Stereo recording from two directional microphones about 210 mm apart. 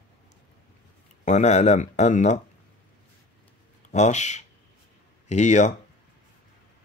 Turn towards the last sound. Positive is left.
turn(degrees=35)  # may be behind; listen again after turning